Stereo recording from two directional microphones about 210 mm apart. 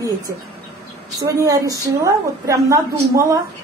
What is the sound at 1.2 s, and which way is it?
A woman's voice, 15° right (ahead or behind).